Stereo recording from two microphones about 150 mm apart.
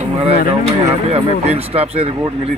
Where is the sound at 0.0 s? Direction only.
40° right (ahead or behind).